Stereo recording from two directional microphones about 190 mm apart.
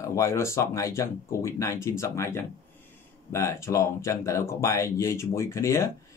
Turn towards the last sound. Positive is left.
turn(degrees=15)  # may be behind; listen again after turning